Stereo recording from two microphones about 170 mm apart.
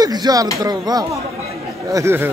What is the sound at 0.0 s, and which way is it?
A man's voice, 25° right (ahead or behind).